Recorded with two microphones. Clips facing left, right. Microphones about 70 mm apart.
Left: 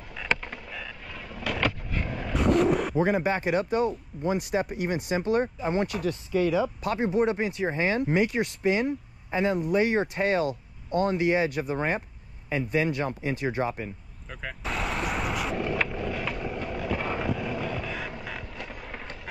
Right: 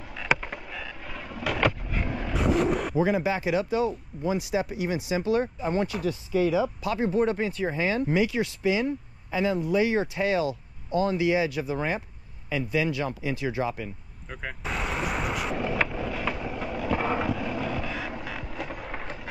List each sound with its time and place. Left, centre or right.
0.2 s vehicle: centre
3.0 s speech: left
7.1 s speech: left
7.7 s speech: left
14.3 s vehicle: centre